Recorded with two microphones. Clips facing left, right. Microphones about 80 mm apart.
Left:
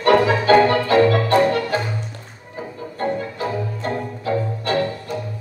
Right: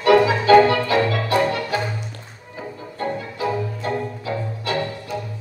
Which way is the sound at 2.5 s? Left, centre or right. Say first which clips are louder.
Left 2 dB; left.